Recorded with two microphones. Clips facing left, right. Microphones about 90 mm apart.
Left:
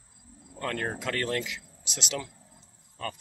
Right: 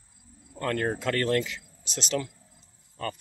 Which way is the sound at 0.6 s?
Centre (ahead or behind).